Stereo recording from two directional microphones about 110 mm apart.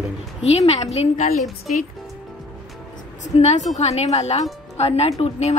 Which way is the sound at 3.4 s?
90° left.